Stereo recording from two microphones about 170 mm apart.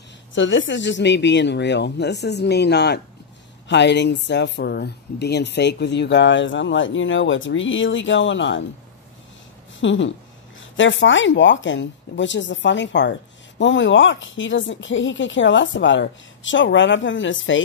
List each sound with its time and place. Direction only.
0.3 s speech: 90° left
3.6 s speech: 90° left
9.8 s speech: 90° left